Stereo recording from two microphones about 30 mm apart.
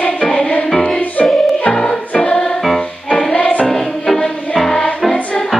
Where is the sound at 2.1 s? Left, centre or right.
Left.